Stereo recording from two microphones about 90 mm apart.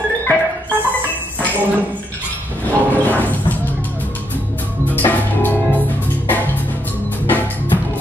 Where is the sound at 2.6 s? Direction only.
20° left (ahead or behind).